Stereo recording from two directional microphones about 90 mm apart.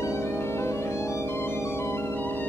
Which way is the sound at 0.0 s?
30° left (ahead or behind).